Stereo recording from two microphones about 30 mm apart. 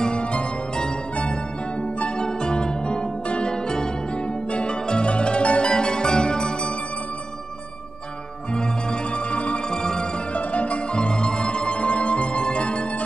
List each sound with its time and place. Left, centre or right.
0.0 s music: left
1.8 s music: left
2.1 s music: left
4.5 s pizzicato: left
4.8 s music: left
8.5 s music: left
9.3 s music: left
9.7 s music: left
10.3 s music: left